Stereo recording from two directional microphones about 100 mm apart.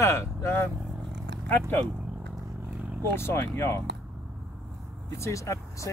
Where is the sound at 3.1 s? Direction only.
25° left (ahead or behind).